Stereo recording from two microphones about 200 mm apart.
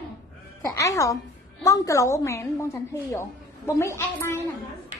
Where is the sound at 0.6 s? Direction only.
15° left (ahead or behind).